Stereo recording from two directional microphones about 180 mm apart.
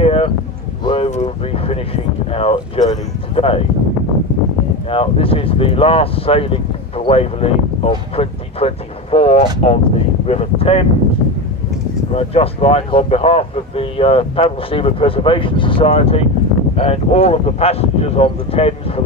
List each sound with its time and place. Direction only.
0.0 s a sound: 30° left (ahead or behind)
2.3 s speech: 30° left (ahead or behind)
4.8 s speech: 30° left (ahead or behind)
12.2 s speech: 35° left (ahead or behind)